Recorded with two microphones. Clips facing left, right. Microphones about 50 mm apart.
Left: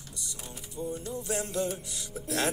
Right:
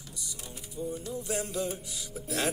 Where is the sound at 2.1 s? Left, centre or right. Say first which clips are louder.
Left 1 dB; centre.